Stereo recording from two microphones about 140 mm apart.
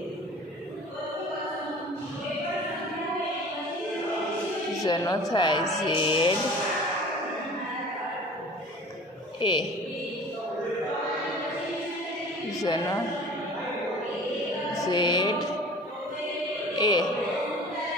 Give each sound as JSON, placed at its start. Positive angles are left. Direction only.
{"t": 4.8, "sound": "speech", "side_deg": 30}
{"t": 5.9, "sound": "music", "side_deg": 40}
{"t": 9.4, "sound": "music", "side_deg": 30}
{"t": 12.6, "sound": "speech", "side_deg": 30}
{"t": 14.9, "sound": "music", "side_deg": 30}
{"t": 16.7, "sound": "music", "side_deg": 30}